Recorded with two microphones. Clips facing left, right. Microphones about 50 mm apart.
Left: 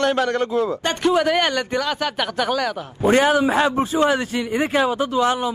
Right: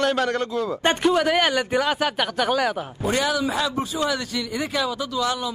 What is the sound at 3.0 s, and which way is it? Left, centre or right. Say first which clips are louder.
A man's voice: left 7 dB; left.